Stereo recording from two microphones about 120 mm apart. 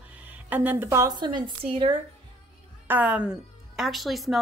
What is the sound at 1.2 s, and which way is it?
Speech, 40° right (ahead or behind).